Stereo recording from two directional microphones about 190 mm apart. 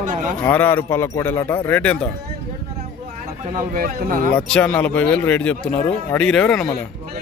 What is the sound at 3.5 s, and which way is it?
Speech, 45° right (ahead or behind).